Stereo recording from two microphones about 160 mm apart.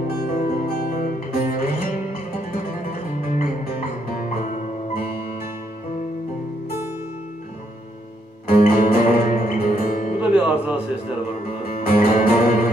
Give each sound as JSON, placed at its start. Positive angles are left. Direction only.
{"t": 0.2, "sound": "music", "side_deg": 70}
{"t": 8.5, "sound": "music", "side_deg": 65}
{"t": 10.2, "sound": "music", "side_deg": -5}
{"t": 11.7, "sound": "music", "side_deg": 65}